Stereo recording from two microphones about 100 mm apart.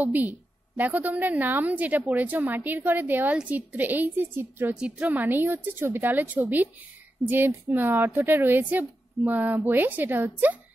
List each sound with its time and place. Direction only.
0.0 s a woman's voice: 15° right (ahead or behind)
4.7 s a woman's voice: 10° right (ahead or behind)